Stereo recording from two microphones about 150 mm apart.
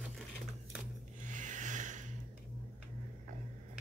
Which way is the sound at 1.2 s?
60° right (ahead or behind).